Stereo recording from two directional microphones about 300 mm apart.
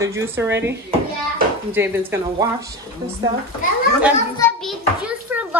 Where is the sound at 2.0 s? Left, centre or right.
Centre.